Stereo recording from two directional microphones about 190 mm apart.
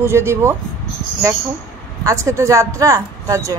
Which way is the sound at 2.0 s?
15° right (ahead or behind).